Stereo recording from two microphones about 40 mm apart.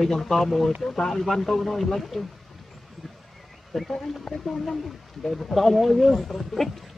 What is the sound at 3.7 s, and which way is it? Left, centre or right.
Speech, centre.